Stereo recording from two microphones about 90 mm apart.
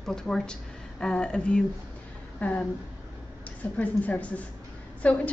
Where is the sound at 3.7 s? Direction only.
15° left (ahead or behind).